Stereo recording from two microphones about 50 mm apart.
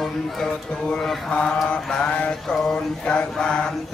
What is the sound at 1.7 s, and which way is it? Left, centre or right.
Mantra, centre.